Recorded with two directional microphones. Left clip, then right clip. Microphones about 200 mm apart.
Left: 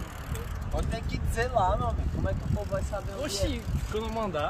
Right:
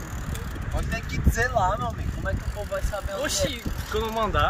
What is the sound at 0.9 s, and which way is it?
Speech, 5° left (ahead or behind).